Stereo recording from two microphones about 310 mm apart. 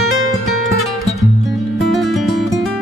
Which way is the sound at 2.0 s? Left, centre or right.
Centre.